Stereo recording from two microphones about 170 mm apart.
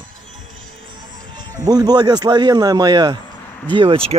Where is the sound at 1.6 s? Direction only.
20° right (ahead or behind).